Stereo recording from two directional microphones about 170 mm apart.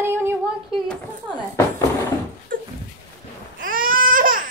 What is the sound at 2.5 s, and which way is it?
Dog, 55° right (ahead or behind).